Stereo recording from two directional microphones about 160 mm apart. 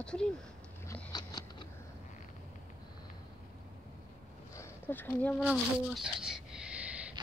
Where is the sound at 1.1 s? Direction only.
25° left (ahead or behind).